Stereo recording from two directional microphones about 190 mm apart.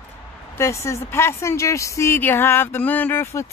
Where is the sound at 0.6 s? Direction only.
15° left (ahead or behind).